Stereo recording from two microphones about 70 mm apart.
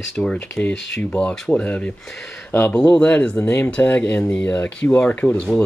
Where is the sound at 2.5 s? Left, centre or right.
Left.